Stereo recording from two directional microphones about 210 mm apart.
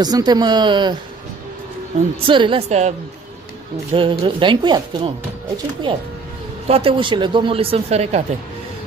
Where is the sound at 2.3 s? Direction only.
25° right (ahead or behind).